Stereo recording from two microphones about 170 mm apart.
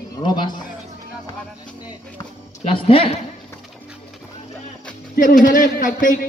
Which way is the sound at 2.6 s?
30° left (ahead or behind).